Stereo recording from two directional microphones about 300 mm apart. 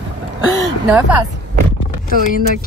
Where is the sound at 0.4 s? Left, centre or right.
Right.